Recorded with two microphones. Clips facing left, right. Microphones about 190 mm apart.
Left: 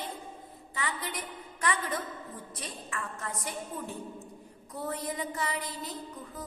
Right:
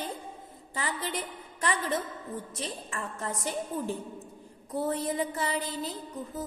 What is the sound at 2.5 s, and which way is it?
Music, 30° right (ahead or behind).